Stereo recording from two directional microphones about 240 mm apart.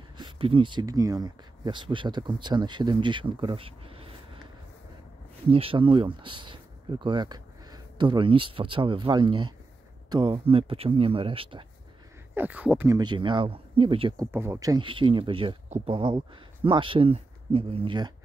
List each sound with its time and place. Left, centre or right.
0.2 s speech: right
5.5 s speech: right
12.4 s speech: centre